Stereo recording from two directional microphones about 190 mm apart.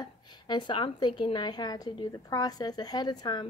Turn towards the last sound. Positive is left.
turn(degrees=20)  # may be behind; listen again after turning